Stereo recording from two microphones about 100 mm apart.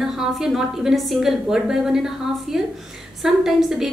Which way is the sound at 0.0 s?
5° right (ahead or behind).